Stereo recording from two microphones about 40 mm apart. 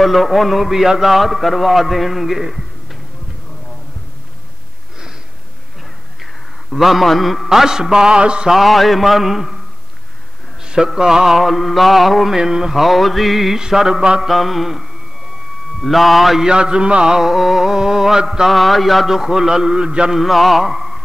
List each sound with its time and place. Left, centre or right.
0.0 s a man's voice: centre
6.7 s a man's voice: centre
7.4 s a man's voice: centre
8.5 s a man's voice: centre
10.6 s a sound: right
11.0 s a man's voice: centre
12.4 s a man's voice: centre
13.6 s a man's voice: centre
14.2 s a man's voice: centre
16.4 s a man's voice: right
17.2 s a man's voice: centre
18.5 s a man's voice: centre; by 20.1 s right
20.1 s a man's voice: centre